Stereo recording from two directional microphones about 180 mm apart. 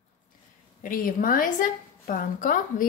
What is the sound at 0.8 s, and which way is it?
A woman's voice, 50° left (ahead or behind).